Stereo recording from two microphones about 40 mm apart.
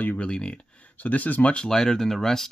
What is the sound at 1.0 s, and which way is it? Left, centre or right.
Speech, left.